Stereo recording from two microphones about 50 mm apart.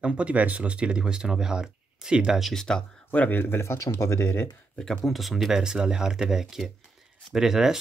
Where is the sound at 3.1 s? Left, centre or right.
Left.